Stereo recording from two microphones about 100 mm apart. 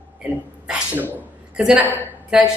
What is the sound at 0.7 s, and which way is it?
A woman's voice, 15° right (ahead or behind).